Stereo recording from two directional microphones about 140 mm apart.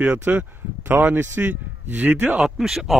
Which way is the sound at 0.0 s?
10° right (ahead or behind).